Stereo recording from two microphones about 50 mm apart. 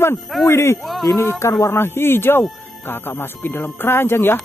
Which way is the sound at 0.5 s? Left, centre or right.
Left.